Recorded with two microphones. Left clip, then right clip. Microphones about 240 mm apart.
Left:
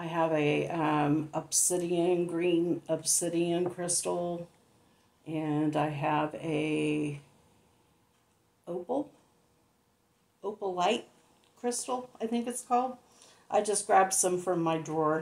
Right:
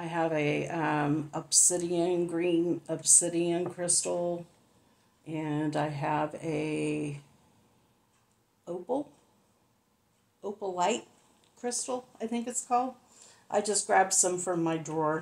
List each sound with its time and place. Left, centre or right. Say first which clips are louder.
0.0 s speech: left 1 dB; right
8.6 s speech: even; right
10.4 s speech: even; right